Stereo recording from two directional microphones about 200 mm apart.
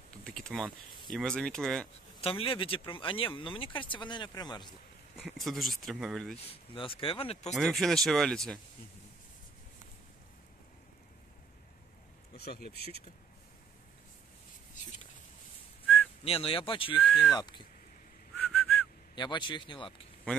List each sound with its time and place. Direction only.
0.2 s a sound: 5° left (ahead or behind)
1.1 s speech: 5° left (ahead or behind)
2.2 s speech: 25° left (ahead or behind)
5.1 s speech: centre (ahead or behind)
6.5 s speech: 25° left (ahead or behind)
7.5 s speech: centre (ahead or behind)
12.4 s speech: 50° left (ahead or behind)
16.3 s speech: 30° left (ahead or behind)
17.0 s speech: 5° left (ahead or behind)
17.4 s speech: 20° left (ahead or behind)
18.5 s whistling: 5° left (ahead or behind)
19.1 s speech: 20° left (ahead or behind)